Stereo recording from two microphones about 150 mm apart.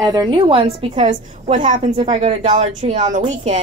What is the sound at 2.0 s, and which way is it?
A woman's voice, 45° right (ahead or behind).